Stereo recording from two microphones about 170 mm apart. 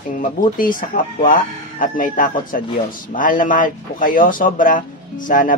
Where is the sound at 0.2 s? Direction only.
55° left (ahead or behind).